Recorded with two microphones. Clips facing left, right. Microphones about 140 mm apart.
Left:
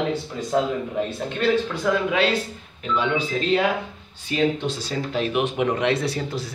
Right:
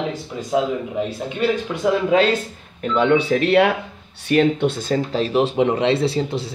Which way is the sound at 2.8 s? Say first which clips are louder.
Right 7 dB; 55° right (ahead or behind).